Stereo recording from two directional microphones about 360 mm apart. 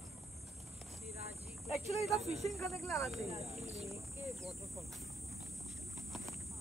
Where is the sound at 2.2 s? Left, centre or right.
Centre.